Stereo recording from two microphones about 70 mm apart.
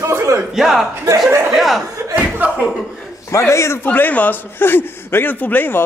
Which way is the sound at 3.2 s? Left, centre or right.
Left.